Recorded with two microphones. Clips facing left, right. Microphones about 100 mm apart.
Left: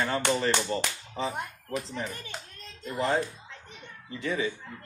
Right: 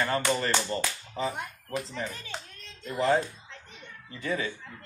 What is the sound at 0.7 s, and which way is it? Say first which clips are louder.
Speech: left 1 dB; 10° left (ahead or behind).